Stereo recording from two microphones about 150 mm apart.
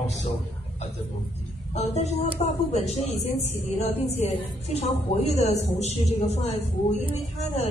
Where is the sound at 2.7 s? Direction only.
45° left (ahead or behind).